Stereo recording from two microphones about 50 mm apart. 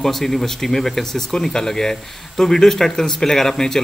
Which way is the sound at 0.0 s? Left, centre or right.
Centre.